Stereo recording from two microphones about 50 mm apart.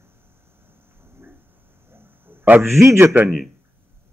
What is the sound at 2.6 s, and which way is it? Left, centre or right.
Speech, right.